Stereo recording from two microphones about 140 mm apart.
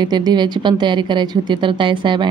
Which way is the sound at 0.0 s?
30° right (ahead or behind).